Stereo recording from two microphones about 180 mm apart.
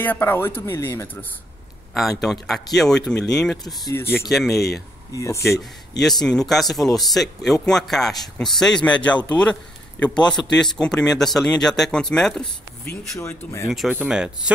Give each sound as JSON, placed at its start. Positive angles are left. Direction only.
{"t": 0.0, "sound": "speech", "side_deg": 10}
{"t": 2.0, "sound": "speech", "side_deg": 0}
{"t": 3.8, "sound": "speech", "side_deg": 15}
{"t": 4.3, "sound": "speech", "side_deg": 0}
{"t": 5.1, "sound": "speech", "side_deg": 15}
{"t": 6.0, "sound": "speech", "side_deg": 5}
{"t": 13.1, "sound": "speech", "side_deg": 15}
{"t": 13.7, "sound": "speech", "side_deg": -5}